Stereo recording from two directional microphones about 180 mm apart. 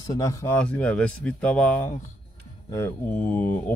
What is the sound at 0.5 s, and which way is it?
Speech, 5° left (ahead or behind).